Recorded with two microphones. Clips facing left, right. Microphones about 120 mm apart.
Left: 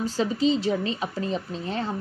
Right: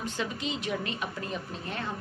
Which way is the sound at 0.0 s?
35° left (ahead or behind).